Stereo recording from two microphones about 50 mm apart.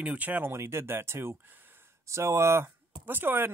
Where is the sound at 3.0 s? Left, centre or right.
Right.